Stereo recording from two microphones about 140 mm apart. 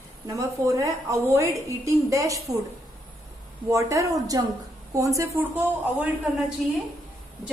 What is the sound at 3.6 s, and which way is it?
A woman's voice, 20° right (ahead or behind).